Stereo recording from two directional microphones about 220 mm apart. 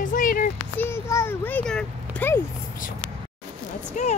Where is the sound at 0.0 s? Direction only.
40° left (ahead or behind).